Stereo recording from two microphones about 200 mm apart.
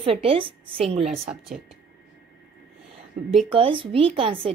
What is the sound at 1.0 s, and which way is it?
Speech, centre (ahead or behind).